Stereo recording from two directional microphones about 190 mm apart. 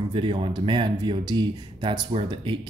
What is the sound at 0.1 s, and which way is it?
Speech, 25° right (ahead or behind).